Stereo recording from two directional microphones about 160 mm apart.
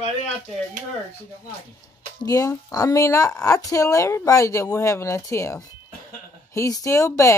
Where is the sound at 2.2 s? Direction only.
20° left (ahead or behind).